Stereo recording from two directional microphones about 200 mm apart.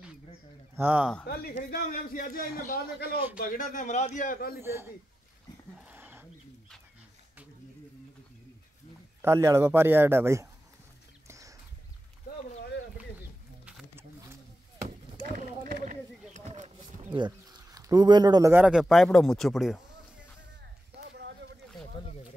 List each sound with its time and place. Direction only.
0.7 s a man's voice: 10° right (ahead or behind)
1.2 s speech: 50° left (ahead or behind)
4.6 s a man's voice: 15° right (ahead or behind)
5.9 s a sound: 10° right (ahead or behind)
9.2 s a man's voice: 15° right (ahead or behind)
11.2 s horse: 15° right (ahead or behind)
15.3 s run: 40° right (ahead or behind)
15.8 s a sound: 35° right (ahead or behind)
17.1 s speech: 20° right (ahead or behind); by 19.8 s centre (ahead or behind)
20.9 s a sound: 60° right (ahead or behind)